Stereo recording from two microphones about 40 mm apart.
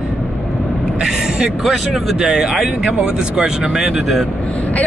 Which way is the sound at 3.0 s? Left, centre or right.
Centre.